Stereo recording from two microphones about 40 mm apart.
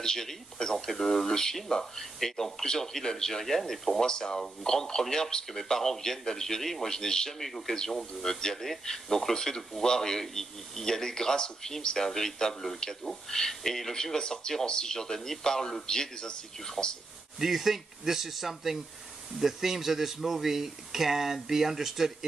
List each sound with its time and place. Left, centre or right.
0.0 s speech: centre
4.0 s a man's voice: centre
14.1 s speech: centre
17.4 s speech: centre